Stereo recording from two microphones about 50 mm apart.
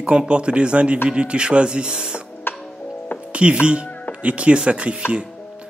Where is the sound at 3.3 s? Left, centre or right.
Right.